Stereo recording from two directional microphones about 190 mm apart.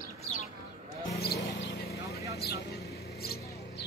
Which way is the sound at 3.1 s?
55° left (ahead or behind).